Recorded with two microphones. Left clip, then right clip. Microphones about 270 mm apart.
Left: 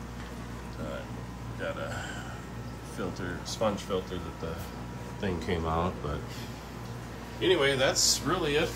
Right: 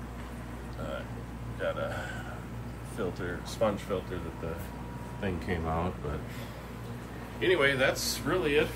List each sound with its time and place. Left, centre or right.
1.6 s a sound: centre
3.0 s speech: centre
5.2 s speech: centre
7.6 s speech: centre